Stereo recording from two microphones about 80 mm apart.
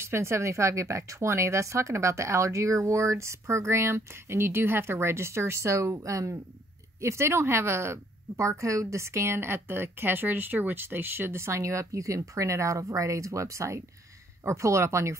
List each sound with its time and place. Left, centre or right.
0.0 s a woman's voice: right